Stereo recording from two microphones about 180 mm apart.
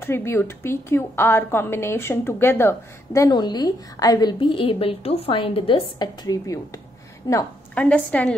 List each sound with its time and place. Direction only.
0.0 s a woman's voice: 15° left (ahead or behind)